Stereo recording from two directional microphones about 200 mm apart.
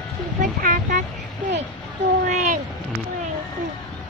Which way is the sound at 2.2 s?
40° right (ahead or behind).